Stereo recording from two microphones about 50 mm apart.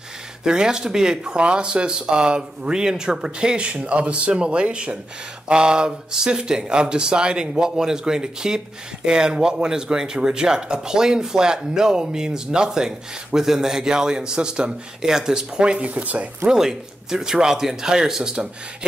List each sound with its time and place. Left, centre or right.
0.4 s speech: centre
16.4 s speech: centre